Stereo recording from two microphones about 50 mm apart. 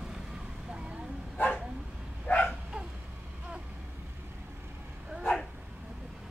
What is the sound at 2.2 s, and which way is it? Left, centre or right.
Dog, left.